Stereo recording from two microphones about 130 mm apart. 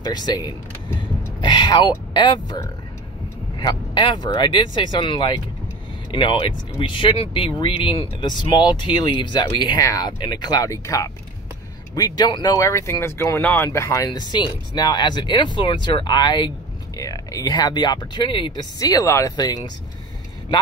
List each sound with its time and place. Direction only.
0.0 s speech: 30° left (ahead or behind)